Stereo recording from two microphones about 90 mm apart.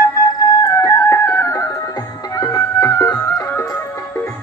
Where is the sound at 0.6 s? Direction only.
35° left (ahead or behind).